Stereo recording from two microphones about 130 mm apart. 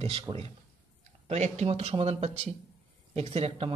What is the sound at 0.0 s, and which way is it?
Speech, 45° right (ahead or behind).